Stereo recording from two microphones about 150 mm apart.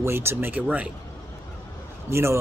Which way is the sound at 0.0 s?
15° right (ahead or behind).